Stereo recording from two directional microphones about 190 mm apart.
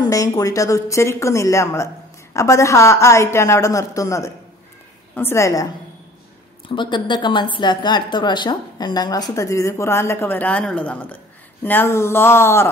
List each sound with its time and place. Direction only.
0.0 s a woman's voice: 20° left (ahead or behind)
6.7 s a woman's voice: 25° left (ahead or behind)